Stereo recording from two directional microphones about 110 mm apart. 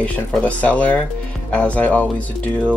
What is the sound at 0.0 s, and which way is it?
Speech, 10° left (ahead or behind).